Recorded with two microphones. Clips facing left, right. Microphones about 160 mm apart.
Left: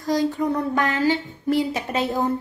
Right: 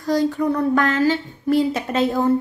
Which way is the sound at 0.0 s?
15° left (ahead or behind).